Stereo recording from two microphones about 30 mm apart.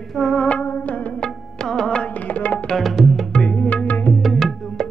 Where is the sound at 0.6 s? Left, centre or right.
Left.